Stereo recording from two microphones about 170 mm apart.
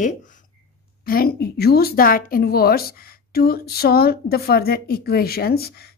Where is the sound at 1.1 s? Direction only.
60° left (ahead or behind).